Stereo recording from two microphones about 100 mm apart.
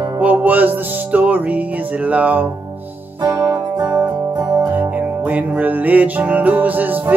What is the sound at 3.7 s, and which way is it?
Music, 45° right (ahead or behind).